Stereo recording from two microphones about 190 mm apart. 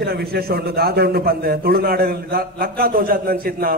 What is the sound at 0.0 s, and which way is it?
A man's voice, 55° right (ahead or behind).